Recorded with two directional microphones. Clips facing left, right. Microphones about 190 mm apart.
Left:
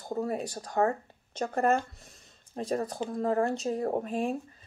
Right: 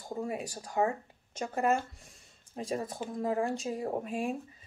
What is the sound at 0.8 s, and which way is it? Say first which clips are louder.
Speech: left 3 dB; 35° left (ahead or behind).